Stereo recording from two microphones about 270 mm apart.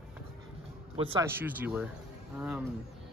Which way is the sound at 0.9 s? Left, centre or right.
Centre.